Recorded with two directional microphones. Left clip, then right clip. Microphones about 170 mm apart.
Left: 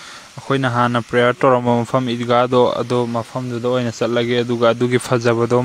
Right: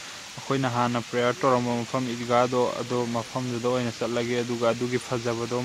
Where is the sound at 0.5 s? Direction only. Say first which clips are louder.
Left 8 dB; 35° left (ahead or behind).